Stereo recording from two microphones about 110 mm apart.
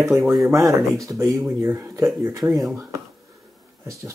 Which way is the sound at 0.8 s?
30° right (ahead or behind).